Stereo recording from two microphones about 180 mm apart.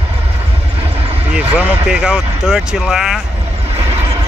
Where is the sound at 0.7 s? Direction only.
35° right (ahead or behind).